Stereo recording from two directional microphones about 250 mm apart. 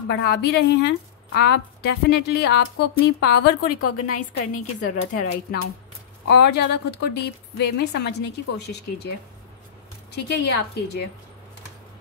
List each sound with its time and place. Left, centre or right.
0.1 s a woman's voice: left
3.8 s a woman's voice: left
6.2 s a woman's voice: left
10.1 s a woman's voice: left